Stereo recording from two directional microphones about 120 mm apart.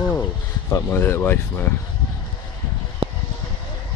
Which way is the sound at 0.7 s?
20° left (ahead or behind).